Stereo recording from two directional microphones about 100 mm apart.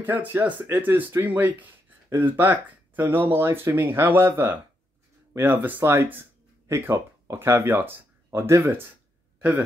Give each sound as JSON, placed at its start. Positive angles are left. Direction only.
{"t": 0.0, "sound": "speech", "side_deg": -20}